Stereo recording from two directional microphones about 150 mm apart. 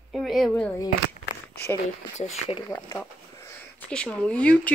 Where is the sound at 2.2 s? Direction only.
40° left (ahead or behind).